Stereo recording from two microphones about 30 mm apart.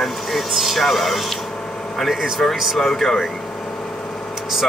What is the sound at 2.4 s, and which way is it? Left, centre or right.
Speech, centre.